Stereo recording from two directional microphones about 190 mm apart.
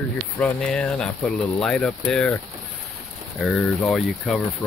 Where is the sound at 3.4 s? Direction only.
Centre (ahead or behind).